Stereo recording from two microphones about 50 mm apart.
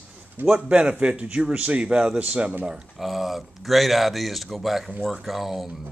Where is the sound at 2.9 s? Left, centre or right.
Centre.